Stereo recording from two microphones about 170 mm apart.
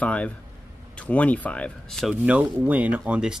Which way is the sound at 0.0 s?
5° left (ahead or behind).